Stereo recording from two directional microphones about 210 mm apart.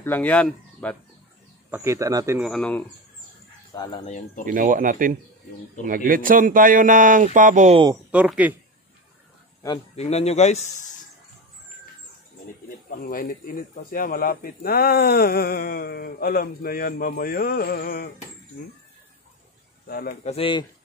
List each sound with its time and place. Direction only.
0.0 s speech: 10° left (ahead or behind)
1.7 s speech: 10° right (ahead or behind)
2.4 s speech: 5° left (ahead or behind)
3.7 s a man's voice: 20° left (ahead or behind)
4.0 s speech: 35° left (ahead or behind)
4.5 s a man's voice: 40° right (ahead or behind)
8.1 s speech: 5° right (ahead or behind)
9.9 s speech: 30° left (ahead or behind)
12.9 s speech: 45° left (ahead or behind)
19.9 s speech: 45° left (ahead or behind)
20.2 s a man's voice: 25° left (ahead or behind)